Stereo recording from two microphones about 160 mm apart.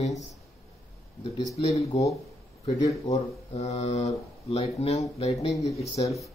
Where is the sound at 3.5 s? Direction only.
40° left (ahead or behind).